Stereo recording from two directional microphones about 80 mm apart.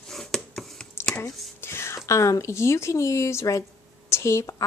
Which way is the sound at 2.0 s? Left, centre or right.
Left.